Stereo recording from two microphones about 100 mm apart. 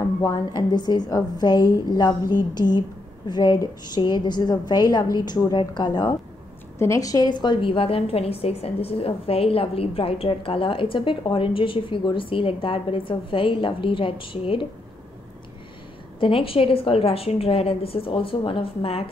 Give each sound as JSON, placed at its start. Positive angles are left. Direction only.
{"t": 0.2, "sound": "a woman's voice", "side_deg": 40}
{"t": 6.8, "sound": "a woman's voice", "side_deg": 30}
{"t": 16.2, "sound": "a woman's voice", "side_deg": 65}